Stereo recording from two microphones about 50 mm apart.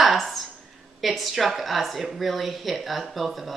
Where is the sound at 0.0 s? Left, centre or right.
Centre.